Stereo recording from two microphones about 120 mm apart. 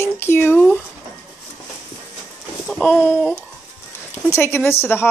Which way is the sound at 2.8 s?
15° left (ahead or behind).